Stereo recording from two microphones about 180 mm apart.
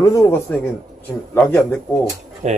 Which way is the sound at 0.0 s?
15° left (ahead or behind).